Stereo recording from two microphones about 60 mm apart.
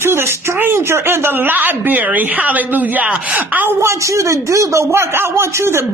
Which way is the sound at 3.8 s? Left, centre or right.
Right.